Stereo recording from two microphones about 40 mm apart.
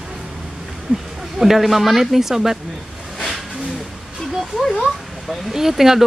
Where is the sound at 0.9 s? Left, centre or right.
Right.